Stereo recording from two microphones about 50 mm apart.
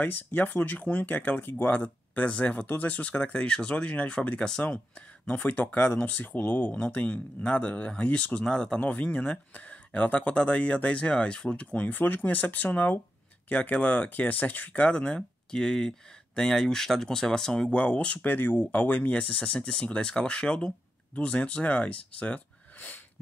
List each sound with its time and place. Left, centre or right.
0.3 s speech: left
6.7 s speech: left
8.5 s speech: centre
8.7 s speech: left; by 17.6 s centre
17.6 s speech: left
18.2 s speech: left
19.2 s speech: left